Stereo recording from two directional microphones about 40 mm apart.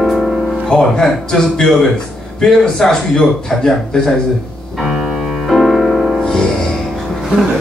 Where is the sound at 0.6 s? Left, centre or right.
Centre.